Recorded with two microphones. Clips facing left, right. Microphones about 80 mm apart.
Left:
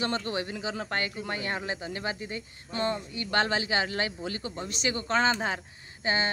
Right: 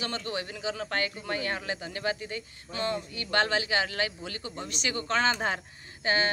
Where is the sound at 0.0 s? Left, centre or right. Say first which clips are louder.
Left 3 dB; left.